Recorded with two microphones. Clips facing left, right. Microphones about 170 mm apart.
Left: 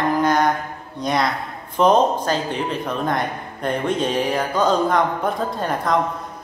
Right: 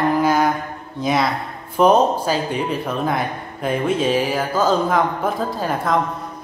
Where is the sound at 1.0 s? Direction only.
5° right (ahead or behind).